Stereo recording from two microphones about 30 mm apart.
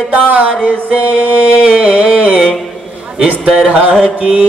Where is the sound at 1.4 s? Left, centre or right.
Right.